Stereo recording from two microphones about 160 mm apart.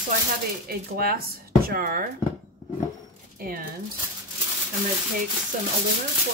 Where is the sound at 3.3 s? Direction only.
65° right (ahead or behind).